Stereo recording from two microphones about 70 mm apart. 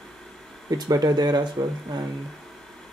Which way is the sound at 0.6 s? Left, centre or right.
Right.